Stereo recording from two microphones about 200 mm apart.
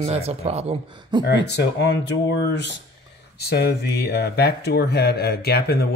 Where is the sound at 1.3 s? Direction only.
60° left (ahead or behind).